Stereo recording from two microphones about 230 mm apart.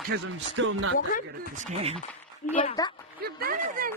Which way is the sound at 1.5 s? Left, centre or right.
Right.